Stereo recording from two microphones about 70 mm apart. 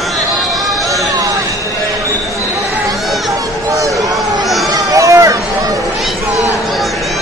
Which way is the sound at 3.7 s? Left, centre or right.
Right.